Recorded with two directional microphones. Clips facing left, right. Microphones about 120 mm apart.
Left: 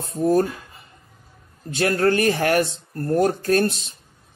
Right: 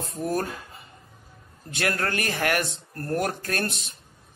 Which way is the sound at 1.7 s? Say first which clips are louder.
Left 8 dB; 30° left (ahead or behind).